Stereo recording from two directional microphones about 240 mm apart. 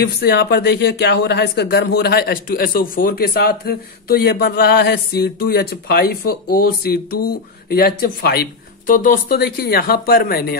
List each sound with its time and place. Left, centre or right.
0.0 s speech: left